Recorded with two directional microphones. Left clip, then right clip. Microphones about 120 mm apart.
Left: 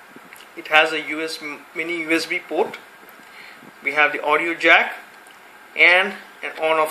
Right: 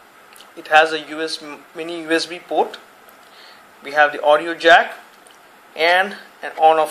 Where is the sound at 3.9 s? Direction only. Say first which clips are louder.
Right 4 dB; 35° right (ahead or behind).